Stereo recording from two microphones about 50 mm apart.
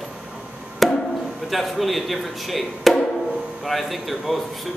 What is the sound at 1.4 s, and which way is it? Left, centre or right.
Speech, centre.